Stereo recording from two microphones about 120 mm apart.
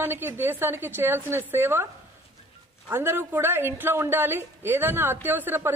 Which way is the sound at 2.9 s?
20° right (ahead or behind).